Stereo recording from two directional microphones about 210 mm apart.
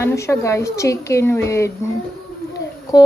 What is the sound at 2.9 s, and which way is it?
Speech, 15° left (ahead or behind).